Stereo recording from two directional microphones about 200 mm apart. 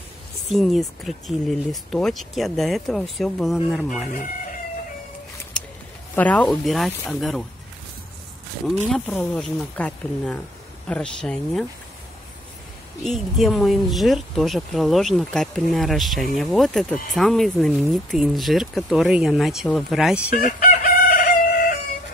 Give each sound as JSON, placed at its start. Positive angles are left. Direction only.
{"t": 0.5, "sound": "speech", "side_deg": 0}
{"t": 6.1, "sound": "speech", "side_deg": 5}
{"t": 8.6, "sound": "speech", "side_deg": 5}
{"t": 13.0, "sound": "speech", "side_deg": 0}
{"t": 20.3, "sound": "chicken", "side_deg": 45}